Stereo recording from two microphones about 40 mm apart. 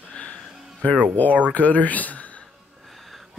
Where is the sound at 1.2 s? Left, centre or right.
Left.